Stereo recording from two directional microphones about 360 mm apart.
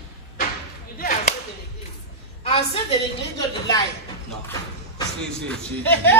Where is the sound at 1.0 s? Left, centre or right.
Left.